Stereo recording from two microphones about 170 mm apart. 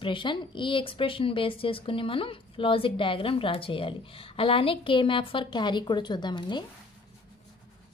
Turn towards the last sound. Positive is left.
turn(degrees=25)  # may be behind; listen again after turning